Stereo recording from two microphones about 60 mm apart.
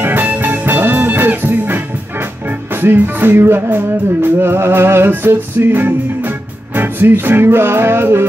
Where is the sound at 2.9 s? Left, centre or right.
Right.